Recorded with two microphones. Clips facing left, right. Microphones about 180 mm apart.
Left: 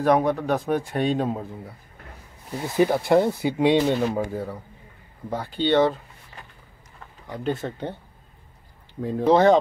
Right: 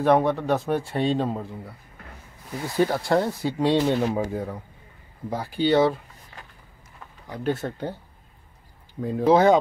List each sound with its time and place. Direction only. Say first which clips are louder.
0.0 s speech: even; 10° left (ahead or behind)
2.5 s speech: left 2 dB; 20° left (ahead or behind)
4.0 s speech: even; 5° right (ahead or behind)
7.2 s speech: right 1 dB; 5° right (ahead or behind)
9.0 s speech: even; centre (ahead or behind)